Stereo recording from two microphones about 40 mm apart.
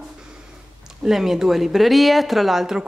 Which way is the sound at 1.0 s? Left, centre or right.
Centre.